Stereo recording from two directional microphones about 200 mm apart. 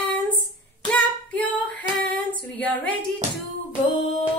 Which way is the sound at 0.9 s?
5° left (ahead or behind).